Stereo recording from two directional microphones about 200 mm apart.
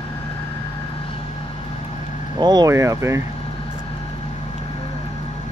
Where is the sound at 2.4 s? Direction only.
20° right (ahead or behind).